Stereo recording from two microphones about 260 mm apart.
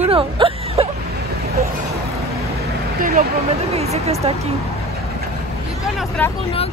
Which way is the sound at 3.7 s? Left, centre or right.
Right.